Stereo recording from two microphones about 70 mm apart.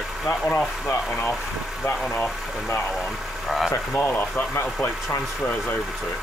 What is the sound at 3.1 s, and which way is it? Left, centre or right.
Vehicle, centre.